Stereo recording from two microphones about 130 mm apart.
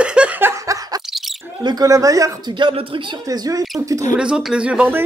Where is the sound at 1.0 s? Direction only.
Centre (ahead or behind).